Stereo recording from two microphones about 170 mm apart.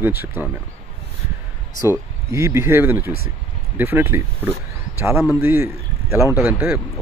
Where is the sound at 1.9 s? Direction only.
15° right (ahead or behind).